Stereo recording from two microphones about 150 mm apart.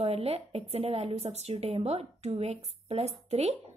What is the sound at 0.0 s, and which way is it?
Speech, 45° right (ahead or behind).